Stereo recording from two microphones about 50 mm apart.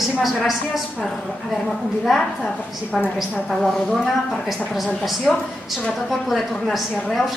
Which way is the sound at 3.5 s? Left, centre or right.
Centre.